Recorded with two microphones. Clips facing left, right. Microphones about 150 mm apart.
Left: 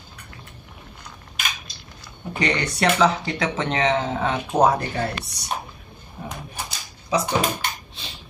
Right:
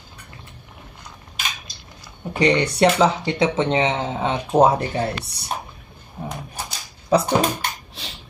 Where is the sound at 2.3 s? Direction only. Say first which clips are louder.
Right 6 dB; 30° right (ahead or behind).